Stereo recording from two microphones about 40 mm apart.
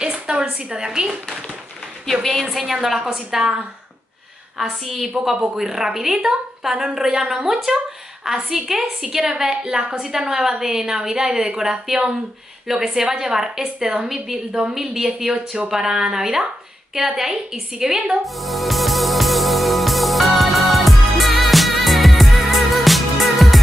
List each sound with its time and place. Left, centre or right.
0.0 s a woman's voice: centre
2.5 s a woman's voice: centre
4.8 s a woman's voice: centre
18.2 s music: centre